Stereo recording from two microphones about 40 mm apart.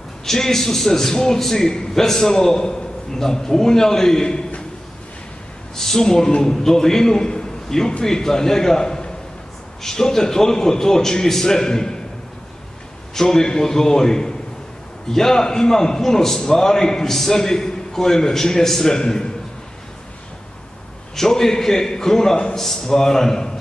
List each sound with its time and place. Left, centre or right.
0.2 s a man's voice: centre
5.8 s a man's voice: centre
13.3 s a man's voice: centre
21.2 s a man's voice: centre